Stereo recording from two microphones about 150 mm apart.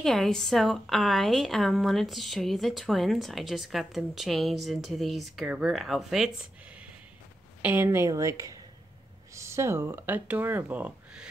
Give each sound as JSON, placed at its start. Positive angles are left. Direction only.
{"t": 0.0, "sound": "a woman's voice", "side_deg": 0}